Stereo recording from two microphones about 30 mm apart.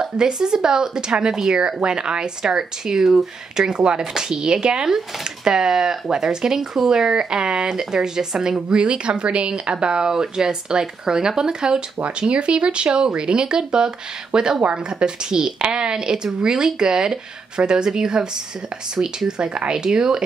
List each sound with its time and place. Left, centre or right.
0.0 s speech: right
8.6 s speech: right
12.2 s speech: right
14.6 s speech: right
15.0 s speech: right